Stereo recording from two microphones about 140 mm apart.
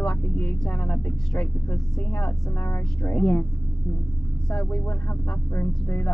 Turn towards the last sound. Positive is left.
turn(degrees=15)  # may be behind; listen again after turning